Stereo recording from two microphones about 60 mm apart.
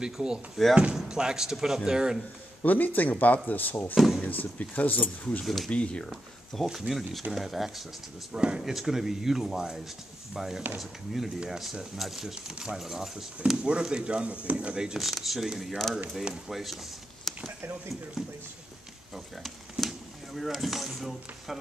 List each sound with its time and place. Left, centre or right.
0.0 s speech: centre
2.6 s speech: left
3.9 s speech: centre
4.2 s speech: left
5.4 s speech: centre
5.7 s speech: centre
6.0 s speech: centre
8.3 s speech: centre
8.6 s speech: centre
15.0 s speech: centre
19.1 s a sound: centre
20.3 s speech: centre